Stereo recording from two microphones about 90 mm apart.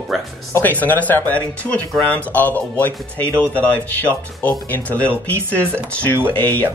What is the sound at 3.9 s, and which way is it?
Speech, 20° left (ahead or behind).